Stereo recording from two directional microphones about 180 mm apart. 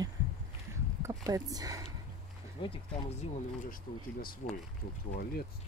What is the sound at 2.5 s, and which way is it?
Speech, 30° left (ahead or behind).